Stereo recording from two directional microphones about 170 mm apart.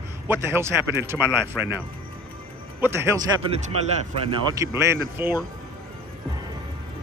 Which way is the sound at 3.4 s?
35° right (ahead or behind).